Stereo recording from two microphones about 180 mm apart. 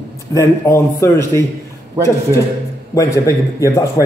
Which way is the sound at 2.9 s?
20° left (ahead or behind).